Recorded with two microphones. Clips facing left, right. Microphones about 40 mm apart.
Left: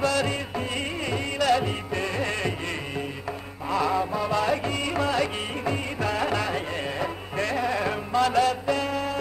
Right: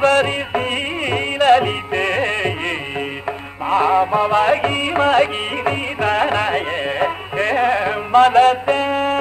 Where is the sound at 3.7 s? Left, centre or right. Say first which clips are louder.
Right 10 dB; right.